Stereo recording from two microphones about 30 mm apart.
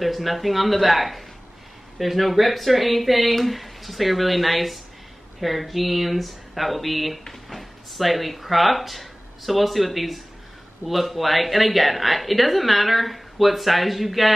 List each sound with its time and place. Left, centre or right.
0.0 s a woman's voice: centre